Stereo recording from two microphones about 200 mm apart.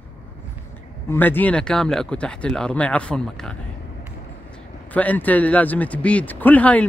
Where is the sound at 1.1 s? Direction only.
10° left (ahead or behind).